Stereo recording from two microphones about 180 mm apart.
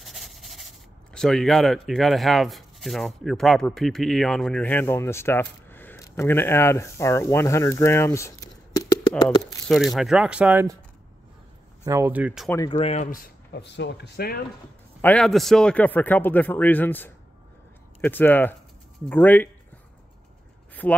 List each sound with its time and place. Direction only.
0.0 s speech: centre (ahead or behind); by 9.6 s 20° left (ahead or behind)
9.7 s speech: centre (ahead or behind)
11.8 s speech: 15° right (ahead or behind)
12.6 s speech: 35° left (ahead or behind)
13.5 s speech: 70° left (ahead or behind)
15.0 s a man's voice: 5° left (ahead or behind)
20.8 s a man's voice: 10° left (ahead or behind)